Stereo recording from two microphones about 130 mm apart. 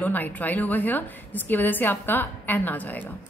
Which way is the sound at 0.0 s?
15° left (ahead or behind).